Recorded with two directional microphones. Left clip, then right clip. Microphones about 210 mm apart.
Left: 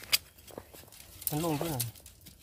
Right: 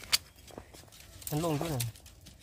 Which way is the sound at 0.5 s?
35° left (ahead or behind).